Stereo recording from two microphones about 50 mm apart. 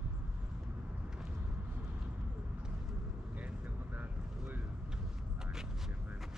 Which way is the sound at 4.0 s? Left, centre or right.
Right.